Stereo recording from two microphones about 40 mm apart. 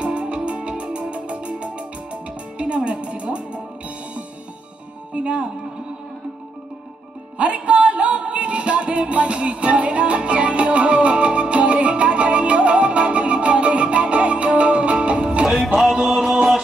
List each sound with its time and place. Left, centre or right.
0.0 s music: right
7.3 s music: right
15.5 s music: centre